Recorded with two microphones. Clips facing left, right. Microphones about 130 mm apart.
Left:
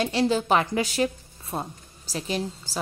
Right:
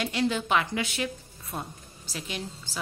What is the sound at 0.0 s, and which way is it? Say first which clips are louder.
A woman's voice: left 5 dB; 35° left (ahead or behind).